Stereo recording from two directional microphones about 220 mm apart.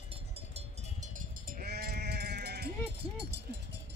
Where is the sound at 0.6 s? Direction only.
35° right (ahead or behind).